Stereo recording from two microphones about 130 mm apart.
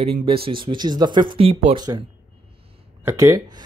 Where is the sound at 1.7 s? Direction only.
30° right (ahead or behind).